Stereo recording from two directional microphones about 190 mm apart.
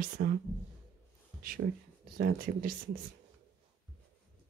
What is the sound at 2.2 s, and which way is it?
Speech, 50° right (ahead or behind).